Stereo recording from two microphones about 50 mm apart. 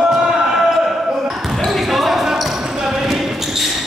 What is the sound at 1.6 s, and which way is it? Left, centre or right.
Basketball bounce, centre.